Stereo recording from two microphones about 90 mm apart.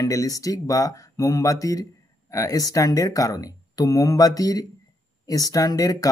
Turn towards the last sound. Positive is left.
turn(degrees=40)  # may be behind; listen again after turning